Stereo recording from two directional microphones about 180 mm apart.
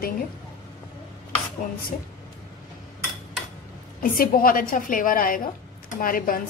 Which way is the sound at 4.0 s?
50° left (ahead or behind).